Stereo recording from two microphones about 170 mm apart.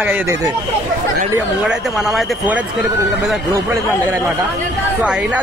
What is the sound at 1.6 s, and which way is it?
Speech, centre (ahead or behind).